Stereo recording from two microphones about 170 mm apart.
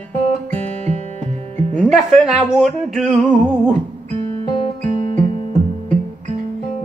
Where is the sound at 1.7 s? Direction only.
5° right (ahead or behind).